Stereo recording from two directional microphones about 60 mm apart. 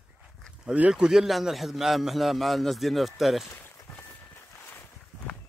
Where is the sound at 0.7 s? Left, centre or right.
Centre.